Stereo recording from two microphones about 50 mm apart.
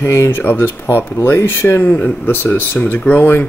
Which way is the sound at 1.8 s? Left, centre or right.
Left.